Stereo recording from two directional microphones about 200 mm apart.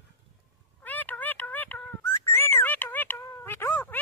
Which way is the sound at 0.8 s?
10° left (ahead or behind).